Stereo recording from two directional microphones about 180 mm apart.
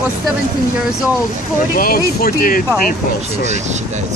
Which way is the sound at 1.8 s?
55° left (ahead or behind).